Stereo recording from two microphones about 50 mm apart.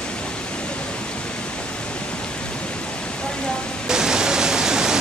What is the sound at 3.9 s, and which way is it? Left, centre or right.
Pink noise, centre.